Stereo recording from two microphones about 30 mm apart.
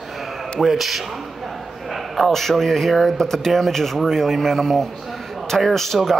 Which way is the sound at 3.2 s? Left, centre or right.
Centre.